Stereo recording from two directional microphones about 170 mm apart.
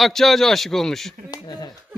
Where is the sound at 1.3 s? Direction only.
25° left (ahead or behind).